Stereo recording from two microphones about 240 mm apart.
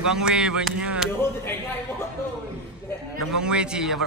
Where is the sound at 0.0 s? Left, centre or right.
Centre.